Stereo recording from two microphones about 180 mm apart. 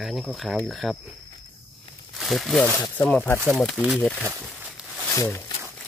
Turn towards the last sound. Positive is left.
turn(degrees=15)  # may be behind; listen again after turning